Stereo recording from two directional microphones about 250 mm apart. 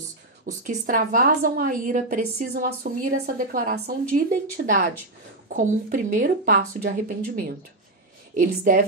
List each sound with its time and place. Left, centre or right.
0.5 s a woman's voice: right